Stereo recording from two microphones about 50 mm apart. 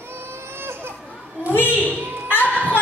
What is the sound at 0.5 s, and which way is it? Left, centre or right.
Baby cry, right.